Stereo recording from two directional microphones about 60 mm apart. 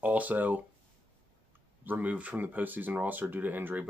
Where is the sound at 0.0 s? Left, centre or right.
Right.